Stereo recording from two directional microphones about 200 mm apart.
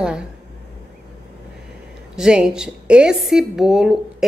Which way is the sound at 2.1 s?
5° right (ahead or behind).